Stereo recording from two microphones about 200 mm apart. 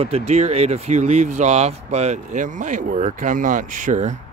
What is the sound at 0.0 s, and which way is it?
Speech, 30° right (ahead or behind).